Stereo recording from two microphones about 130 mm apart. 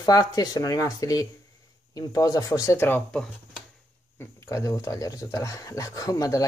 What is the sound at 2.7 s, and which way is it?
Speech, 15° left (ahead or behind).